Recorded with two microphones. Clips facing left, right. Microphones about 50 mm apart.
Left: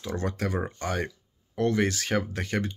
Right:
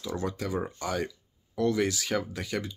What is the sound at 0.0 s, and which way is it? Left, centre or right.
Speech, left.